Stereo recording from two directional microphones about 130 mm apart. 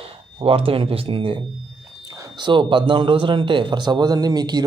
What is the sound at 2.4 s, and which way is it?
Speech, 40° right (ahead or behind).